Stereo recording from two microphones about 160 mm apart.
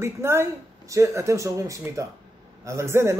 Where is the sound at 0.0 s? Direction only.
15° right (ahead or behind).